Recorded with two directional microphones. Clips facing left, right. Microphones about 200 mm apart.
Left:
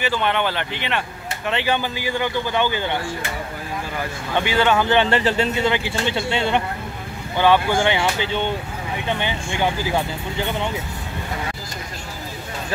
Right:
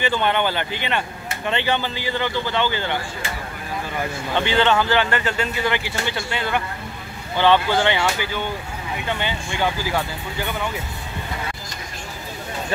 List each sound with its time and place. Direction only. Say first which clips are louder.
0.0 s speech: right 1 dB; centre (ahead or behind)
4.4 s speech: even; 10° left (ahead or behind)
7.3 s speech: even; 10° left (ahead or behind)